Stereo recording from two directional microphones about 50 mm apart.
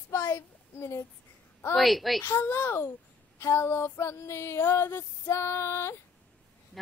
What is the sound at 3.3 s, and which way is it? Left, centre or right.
A woman's voice, left.